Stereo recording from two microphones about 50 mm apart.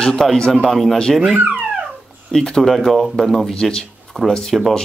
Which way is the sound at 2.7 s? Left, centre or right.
Centre.